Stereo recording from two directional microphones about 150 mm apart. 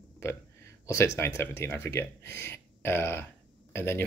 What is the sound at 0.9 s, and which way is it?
Speech, 20° left (ahead or behind).